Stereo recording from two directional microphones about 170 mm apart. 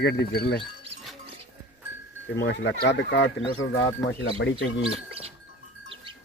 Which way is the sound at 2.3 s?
90° left.